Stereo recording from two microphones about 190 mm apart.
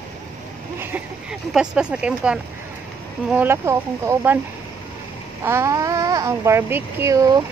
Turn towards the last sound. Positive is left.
turn(degrees=-20)  # may be behind; listen again after turning